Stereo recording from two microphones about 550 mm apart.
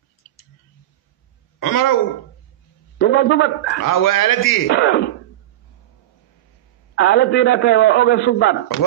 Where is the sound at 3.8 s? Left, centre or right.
Left.